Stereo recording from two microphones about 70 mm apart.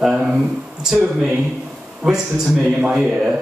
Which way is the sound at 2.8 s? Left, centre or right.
Centre.